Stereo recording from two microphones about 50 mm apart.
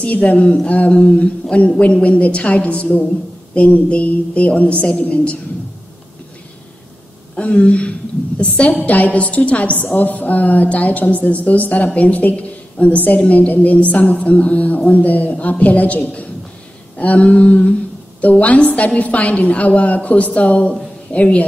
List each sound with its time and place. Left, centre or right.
0.0 s a woman's voice: left
7.3 s a woman's voice: left